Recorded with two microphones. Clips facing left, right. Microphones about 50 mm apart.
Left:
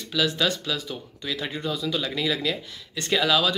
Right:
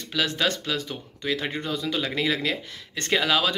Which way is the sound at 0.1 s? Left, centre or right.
Right.